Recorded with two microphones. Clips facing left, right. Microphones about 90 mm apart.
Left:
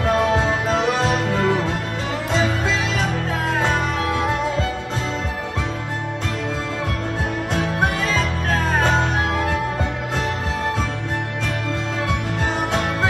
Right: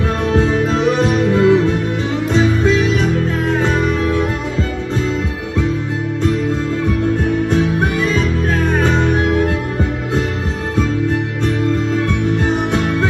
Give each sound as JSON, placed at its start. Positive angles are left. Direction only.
{"t": 1.0, "sound": "music", "side_deg": 45}
{"t": 8.7, "sound": "music", "side_deg": 35}